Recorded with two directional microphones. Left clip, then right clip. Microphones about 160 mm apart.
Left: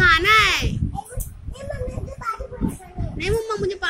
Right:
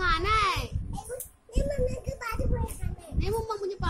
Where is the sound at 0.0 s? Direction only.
15° right (ahead or behind).